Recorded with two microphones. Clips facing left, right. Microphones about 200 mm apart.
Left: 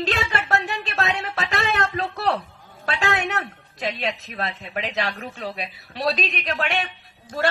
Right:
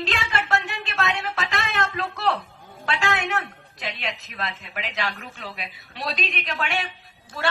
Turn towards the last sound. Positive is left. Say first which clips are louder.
# left 6 dB
turn(degrees=40)  # may be behind; listen again after turning